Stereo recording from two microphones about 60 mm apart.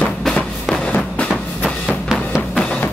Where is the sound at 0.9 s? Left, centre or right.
Left.